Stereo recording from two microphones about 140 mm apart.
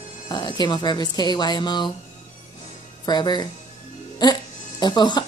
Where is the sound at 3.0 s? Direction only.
30° left (ahead or behind).